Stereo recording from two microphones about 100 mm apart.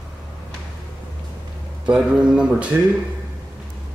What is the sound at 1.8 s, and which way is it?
Speech, 10° right (ahead or behind).